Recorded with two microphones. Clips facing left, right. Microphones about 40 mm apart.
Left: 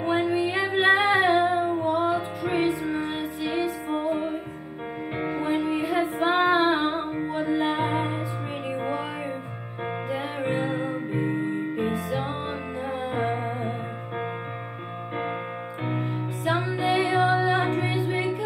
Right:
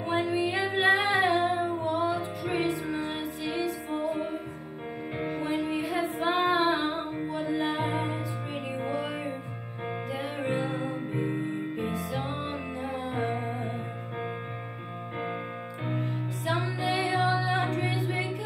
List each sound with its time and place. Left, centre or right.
0.0 s female singing: left
1.1 s music: left
10.1 s music: left
11.8 s music: left
15.8 s music: left